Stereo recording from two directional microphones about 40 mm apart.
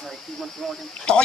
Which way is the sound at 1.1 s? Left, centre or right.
Left.